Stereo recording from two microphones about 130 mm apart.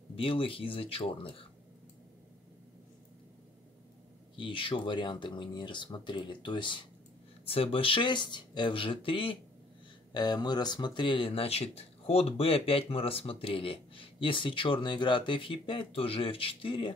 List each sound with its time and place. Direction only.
0.1 s speech: 45° left (ahead or behind)
4.4 s speech: 40° left (ahead or behind)
10.1 s speech: 35° left (ahead or behind)